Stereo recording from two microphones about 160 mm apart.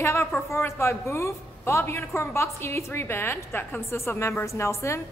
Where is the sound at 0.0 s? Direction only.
15° left (ahead or behind).